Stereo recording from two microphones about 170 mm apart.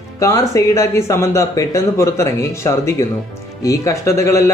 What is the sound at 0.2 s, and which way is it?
Speech, 20° left (ahead or behind).